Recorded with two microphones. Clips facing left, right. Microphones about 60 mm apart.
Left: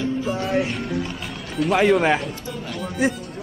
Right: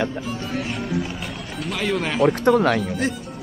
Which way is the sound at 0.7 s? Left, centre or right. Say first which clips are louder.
Even; centre.